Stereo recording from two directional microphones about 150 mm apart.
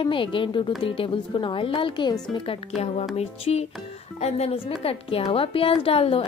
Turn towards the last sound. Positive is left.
turn(degrees=40)  # may be behind; listen again after turning